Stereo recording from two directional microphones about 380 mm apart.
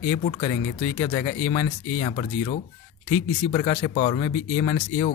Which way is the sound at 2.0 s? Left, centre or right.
Centre.